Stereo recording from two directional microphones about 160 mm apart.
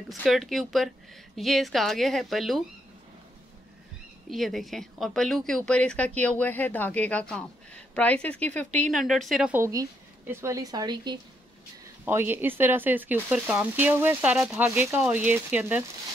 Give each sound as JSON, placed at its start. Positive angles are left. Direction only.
{"t": 0.1, "sound": "speech", "side_deg": 0}
{"t": 4.3, "sound": "a woman's voice", "side_deg": 0}
{"t": 9.6, "sound": "speech", "side_deg": -20}
{"t": 12.0, "sound": "speech", "side_deg": -15}